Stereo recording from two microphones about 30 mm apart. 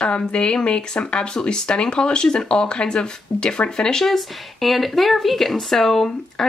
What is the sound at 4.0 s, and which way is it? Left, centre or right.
Speech, centre.